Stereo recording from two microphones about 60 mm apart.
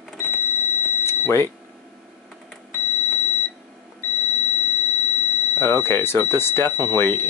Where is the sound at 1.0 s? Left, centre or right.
Left.